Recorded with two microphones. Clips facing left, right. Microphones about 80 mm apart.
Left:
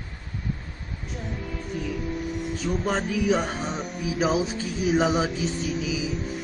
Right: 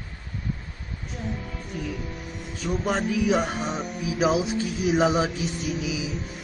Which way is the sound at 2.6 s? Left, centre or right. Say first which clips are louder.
Right 1 dB; centre.